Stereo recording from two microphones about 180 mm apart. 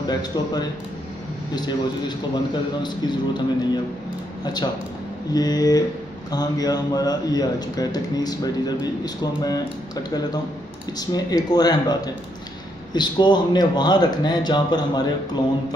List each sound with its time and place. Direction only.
0.1 s a man's voice: 25° left (ahead or behind)
5.3 s a man's voice: 20° left (ahead or behind)
11.0 s a man's voice: 20° left (ahead or behind)